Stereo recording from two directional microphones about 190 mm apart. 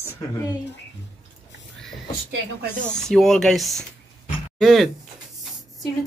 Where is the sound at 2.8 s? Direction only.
5° left (ahead or behind).